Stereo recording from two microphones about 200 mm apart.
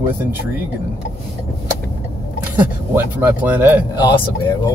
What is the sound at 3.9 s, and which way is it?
Speech, 20° left (ahead or behind).